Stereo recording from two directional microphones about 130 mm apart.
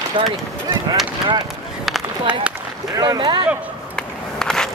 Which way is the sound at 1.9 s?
5° right (ahead or behind).